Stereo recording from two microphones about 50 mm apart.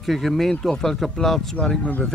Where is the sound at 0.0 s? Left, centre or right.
Centre.